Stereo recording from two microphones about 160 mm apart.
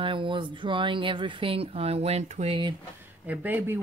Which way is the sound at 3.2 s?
10° right (ahead or behind).